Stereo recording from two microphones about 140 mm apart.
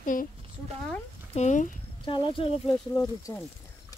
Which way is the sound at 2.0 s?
40° left (ahead or behind).